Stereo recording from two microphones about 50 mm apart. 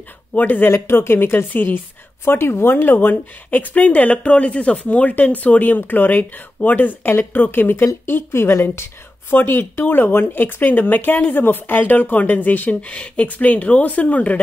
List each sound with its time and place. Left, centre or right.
0.3 s speech: left
0.7 s speech: left
2.2 s speech: left
8.1 s a woman's voice: left
9.3 s speech: left
12.8 s speech: left